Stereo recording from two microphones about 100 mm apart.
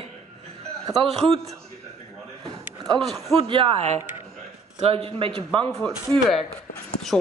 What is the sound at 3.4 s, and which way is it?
Speech, 60° right (ahead or behind).